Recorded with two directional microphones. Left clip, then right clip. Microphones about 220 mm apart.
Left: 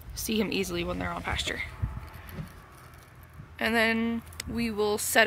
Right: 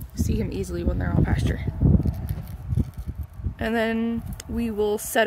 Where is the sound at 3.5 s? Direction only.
25° right (ahead or behind).